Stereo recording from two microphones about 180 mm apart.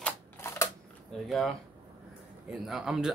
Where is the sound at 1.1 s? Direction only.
5° left (ahead or behind).